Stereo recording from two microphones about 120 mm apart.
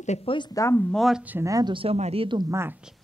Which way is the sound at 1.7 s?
45° right (ahead or behind).